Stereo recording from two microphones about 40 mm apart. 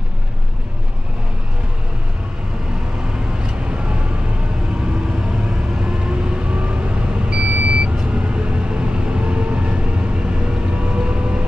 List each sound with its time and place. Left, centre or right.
3.4 s vehicle: right
5.8 s vehicle: right